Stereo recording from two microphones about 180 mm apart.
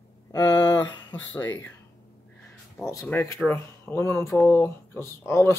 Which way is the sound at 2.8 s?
15° left (ahead or behind).